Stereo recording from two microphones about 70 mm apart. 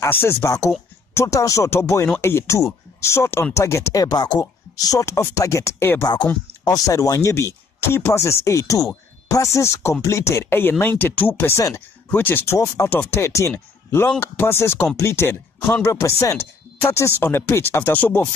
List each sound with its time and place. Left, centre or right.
0.1 s speech: left
1.1 s speech: left
1.7 s speech: left
6.6 s speech: left
11.5 s speech: left
12.1 s speech: left
12.8 s speech: left
16.0 s speech: left
17.2 s speech: left